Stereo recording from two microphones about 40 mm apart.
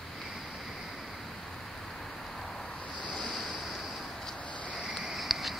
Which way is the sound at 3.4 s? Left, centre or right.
Centre.